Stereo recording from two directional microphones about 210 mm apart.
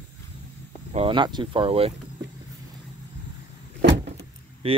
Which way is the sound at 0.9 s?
25° right (ahead or behind).